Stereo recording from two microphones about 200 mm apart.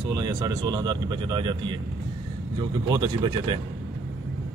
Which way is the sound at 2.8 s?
20° right (ahead or behind).